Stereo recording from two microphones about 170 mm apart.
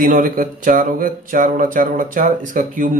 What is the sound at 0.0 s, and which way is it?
Speech, 55° right (ahead or behind).